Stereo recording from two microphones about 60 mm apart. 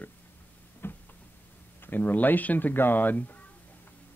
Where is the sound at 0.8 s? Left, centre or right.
Left.